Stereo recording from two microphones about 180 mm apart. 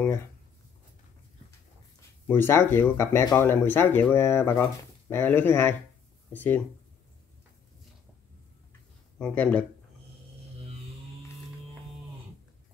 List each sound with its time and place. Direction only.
2.0 s speech: 10° left (ahead or behind)
9.2 s speech: 10° left (ahead or behind)